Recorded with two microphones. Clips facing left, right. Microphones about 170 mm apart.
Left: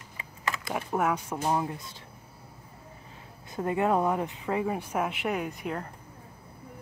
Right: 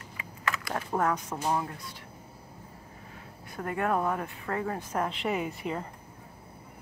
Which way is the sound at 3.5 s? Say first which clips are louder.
Left 3 dB; 20° left (ahead or behind).